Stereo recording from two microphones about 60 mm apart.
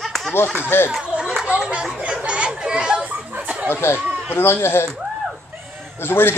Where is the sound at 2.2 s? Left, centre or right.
Centre.